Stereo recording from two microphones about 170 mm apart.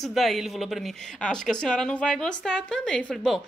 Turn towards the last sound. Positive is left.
turn(degrees=0)  # may be behind; listen again after turning